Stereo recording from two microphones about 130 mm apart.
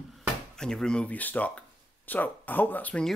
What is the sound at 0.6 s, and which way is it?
Speech, 5° left (ahead or behind).